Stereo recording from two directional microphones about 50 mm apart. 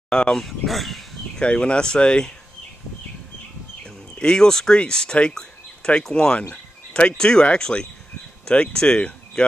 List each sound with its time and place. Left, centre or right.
0.1 s speech: centre
0.5 s speech: centre
1.4 s speech: left
3.8 s speech: centre